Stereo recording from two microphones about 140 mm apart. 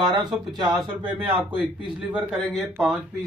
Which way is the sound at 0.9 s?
10° right (ahead or behind).